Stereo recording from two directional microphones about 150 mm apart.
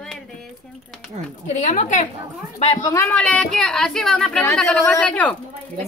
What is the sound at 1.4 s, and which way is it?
Speech, 55° left (ahead or behind).